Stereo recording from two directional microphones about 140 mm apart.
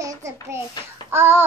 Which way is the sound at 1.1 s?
15° right (ahead or behind).